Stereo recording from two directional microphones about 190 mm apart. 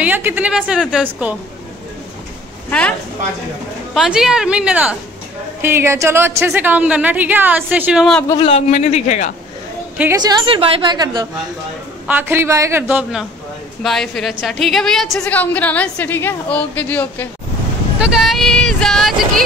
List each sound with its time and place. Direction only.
0.0 s a woman's voice: 10° right (ahead or behind)
3.9 s a woman's voice: centre (ahead or behind)
8.3 s a man's voice: 30° left (ahead or behind)
10.2 s a woman's voice: 25° right (ahead or behind)
12.1 s a woman's voice: 10° right (ahead or behind); by 17.3 s 10° left (ahead or behind)
17.9 s vehicle: 5° right (ahead or behind)